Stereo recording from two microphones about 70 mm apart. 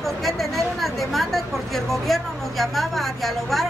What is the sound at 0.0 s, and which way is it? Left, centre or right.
A woman's voice, centre.